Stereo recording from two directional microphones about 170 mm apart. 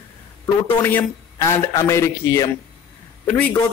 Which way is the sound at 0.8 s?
15° left (ahead or behind).